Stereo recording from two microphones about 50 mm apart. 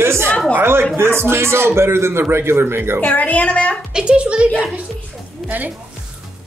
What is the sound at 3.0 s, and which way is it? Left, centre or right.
Speech, left.